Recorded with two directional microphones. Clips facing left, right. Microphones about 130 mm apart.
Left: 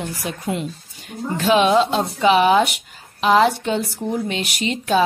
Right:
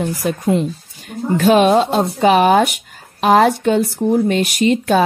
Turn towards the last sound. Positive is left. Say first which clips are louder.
# right 6 dB
turn(degrees=-50)  # may be behind; listen again after turning